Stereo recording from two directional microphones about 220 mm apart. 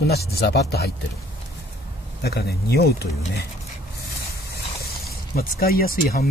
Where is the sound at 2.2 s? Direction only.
45° left (ahead or behind).